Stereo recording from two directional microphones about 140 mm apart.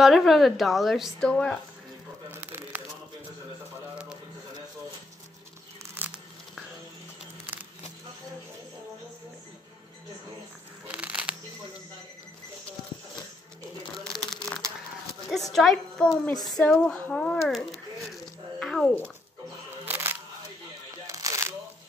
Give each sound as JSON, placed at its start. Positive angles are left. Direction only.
{"t": 0.0, "sound": "a woman's voice", "side_deg": 0}
{"t": 2.3, "sound": "a sound", "side_deg": -15}
{"t": 5.9, "sound": "tearing", "side_deg": -10}
{"t": 10.9, "sound": "a sound", "side_deg": -10}
{"t": 13.9, "sound": "crumpling", "side_deg": 5}
{"t": 15.3, "sound": "a sound", "side_deg": 0}
{"t": 16.4, "sound": "a woman's voice", "side_deg": 0}
{"t": 18.1, "sound": "music", "side_deg": 5}
{"t": 19.8, "sound": "music", "side_deg": -15}
{"t": 21.1, "sound": "shuffling cards", "side_deg": -25}